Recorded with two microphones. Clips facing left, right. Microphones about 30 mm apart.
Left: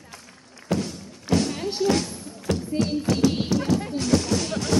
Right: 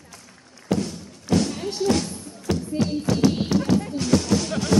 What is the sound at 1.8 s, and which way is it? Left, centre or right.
Music, centre.